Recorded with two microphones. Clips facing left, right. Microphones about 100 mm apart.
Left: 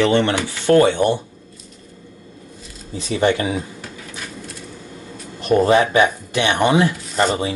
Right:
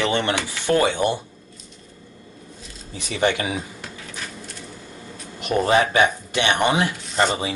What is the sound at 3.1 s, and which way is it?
Speech, 15° left (ahead or behind).